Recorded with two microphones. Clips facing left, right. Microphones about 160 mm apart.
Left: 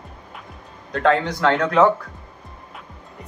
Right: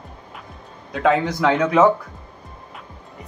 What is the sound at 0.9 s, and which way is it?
A man's voice, 5° right (ahead or behind).